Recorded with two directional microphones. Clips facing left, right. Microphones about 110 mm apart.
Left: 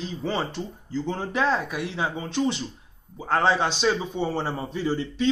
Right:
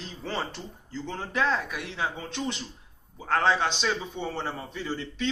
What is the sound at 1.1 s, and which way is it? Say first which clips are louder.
Speech: left 3 dB; 25° left (ahead or behind).